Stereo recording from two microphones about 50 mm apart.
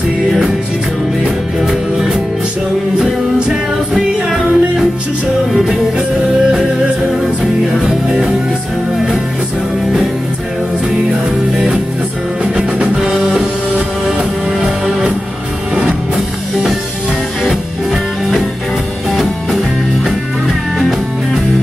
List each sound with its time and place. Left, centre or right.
1.6 s music: centre
3.9 s music: centre
11.1 s music: centre
14.6 s music: centre